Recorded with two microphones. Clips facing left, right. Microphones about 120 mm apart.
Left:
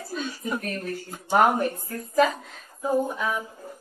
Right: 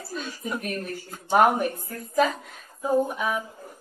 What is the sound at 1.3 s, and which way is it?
Speech, 15° right (ahead or behind).